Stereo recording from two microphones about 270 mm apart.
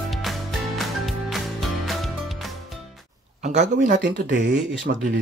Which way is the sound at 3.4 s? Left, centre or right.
Right.